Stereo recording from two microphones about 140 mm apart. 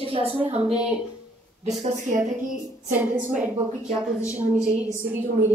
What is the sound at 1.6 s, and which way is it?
Speech, 55° right (ahead or behind).